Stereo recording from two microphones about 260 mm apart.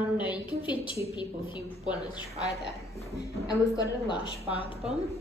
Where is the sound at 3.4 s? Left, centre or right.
Centre.